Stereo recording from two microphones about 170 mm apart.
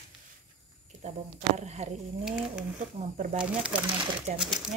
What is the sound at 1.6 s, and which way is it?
Speech, 40° right (ahead or behind).